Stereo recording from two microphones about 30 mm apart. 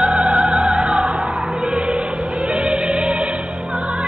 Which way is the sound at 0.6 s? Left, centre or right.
Right.